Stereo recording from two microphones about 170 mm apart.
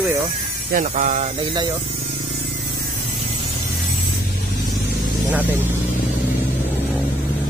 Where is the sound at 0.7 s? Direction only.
50° right (ahead or behind).